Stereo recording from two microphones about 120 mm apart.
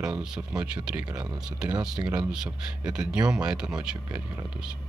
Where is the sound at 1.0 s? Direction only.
35° right (ahead or behind).